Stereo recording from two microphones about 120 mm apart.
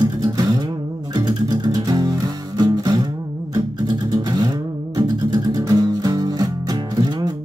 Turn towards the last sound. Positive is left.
turn(degrees=-35)  # may be behind; listen again after turning